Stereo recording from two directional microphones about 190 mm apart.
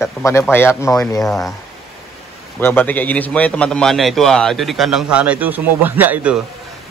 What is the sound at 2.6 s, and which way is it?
A man's voice, 10° left (ahead or behind).